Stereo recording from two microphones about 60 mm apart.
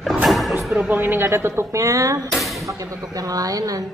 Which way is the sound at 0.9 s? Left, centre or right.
Right.